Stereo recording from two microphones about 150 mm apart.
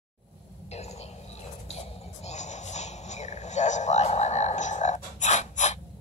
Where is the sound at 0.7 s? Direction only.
45° left (ahead or behind).